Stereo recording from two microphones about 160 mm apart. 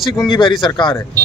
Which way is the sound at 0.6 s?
30° left (ahead or behind).